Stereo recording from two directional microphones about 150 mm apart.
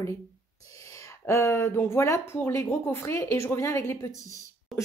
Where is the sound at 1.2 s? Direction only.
20° left (ahead or behind).